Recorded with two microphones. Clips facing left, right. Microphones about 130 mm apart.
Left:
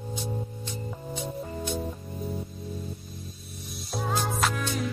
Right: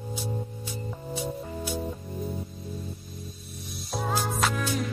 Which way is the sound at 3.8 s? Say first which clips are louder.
Even; centre (ahead or behind).